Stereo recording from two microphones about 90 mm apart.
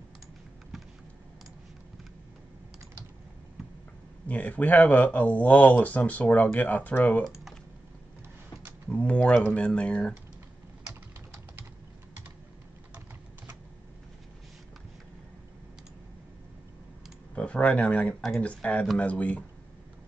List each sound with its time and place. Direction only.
4.3 s speech: 15° left (ahead or behind)
8.8 s speech: 15° left (ahead or behind)
17.4 s speech: 10° left (ahead or behind)